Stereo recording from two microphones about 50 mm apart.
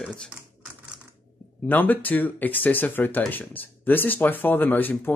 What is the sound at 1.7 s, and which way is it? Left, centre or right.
Speech, left.